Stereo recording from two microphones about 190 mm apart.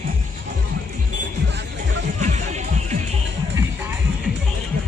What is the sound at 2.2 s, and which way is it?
Music, 40° right (ahead or behind).